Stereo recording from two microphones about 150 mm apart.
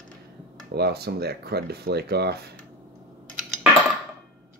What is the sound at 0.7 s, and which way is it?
Speech, 90° right.